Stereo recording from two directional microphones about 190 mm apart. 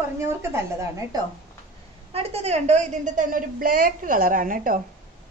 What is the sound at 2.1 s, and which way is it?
A woman's voice, 30° right (ahead or behind).